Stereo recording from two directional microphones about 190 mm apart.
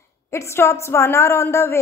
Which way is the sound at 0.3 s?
15° left (ahead or behind).